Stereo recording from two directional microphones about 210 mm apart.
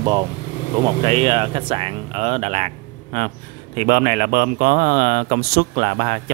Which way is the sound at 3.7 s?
45° right (ahead or behind).